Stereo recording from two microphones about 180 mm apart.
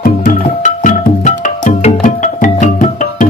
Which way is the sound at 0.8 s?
45° left (ahead or behind).